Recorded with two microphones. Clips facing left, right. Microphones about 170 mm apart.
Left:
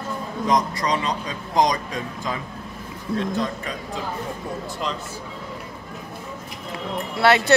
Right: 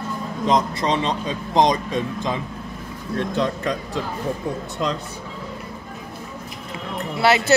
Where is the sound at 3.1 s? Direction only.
70° right (ahead or behind).